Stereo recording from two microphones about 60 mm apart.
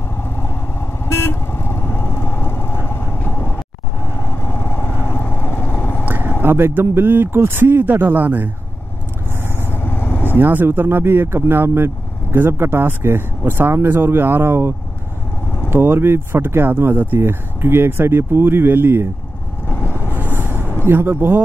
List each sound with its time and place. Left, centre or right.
1.0 s vehicle: left
6.0 s vehicle: right
6.4 s speech: right
9.6 s vehicle: left
10.3 s speech: right
15.7 s speech: right
20.8 s speech: right